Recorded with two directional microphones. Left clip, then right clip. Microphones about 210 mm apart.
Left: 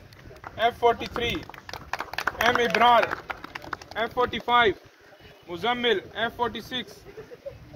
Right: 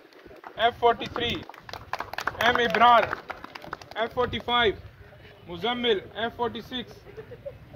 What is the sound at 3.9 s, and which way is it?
A man's voice, 40° left (ahead or behind).